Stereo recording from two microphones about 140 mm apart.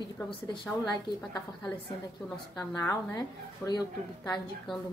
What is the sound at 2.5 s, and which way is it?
A woman's voice, 20° left (ahead or behind).